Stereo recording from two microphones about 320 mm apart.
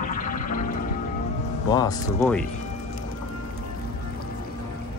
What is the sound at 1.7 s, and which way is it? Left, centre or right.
Speech, centre.